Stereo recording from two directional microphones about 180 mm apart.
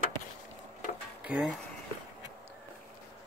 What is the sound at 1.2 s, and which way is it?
Speech, 5° right (ahead or behind).